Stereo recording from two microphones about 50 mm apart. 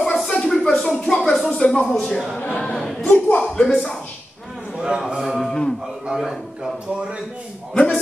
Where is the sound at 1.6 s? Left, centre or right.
Centre.